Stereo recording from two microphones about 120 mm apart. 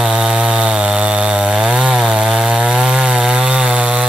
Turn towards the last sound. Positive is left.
turn(degrees=-5)  # may be behind; listen again after turning